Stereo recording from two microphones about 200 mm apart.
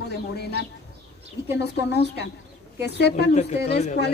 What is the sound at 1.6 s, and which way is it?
A woman's voice, 55° left (ahead or behind).